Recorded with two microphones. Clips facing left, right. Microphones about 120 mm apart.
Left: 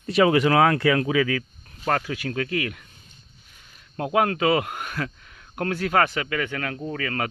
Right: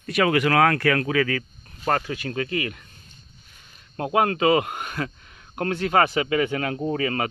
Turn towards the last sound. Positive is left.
turn(degrees=-20)  # may be behind; listen again after turning